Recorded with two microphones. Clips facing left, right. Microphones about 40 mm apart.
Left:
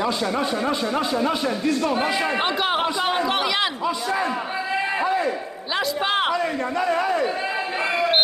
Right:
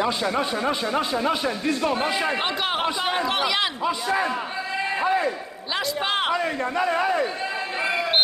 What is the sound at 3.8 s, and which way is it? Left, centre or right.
Speech, right.